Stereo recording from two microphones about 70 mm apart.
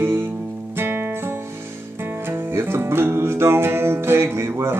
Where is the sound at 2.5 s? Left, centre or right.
Right.